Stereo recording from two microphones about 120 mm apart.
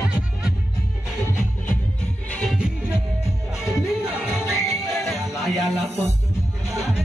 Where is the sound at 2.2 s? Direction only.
10° left (ahead or behind).